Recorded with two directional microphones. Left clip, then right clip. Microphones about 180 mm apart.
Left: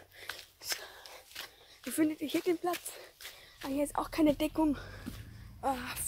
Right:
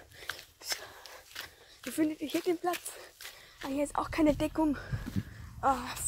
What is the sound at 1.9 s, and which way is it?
Speech, 20° left (ahead or behind).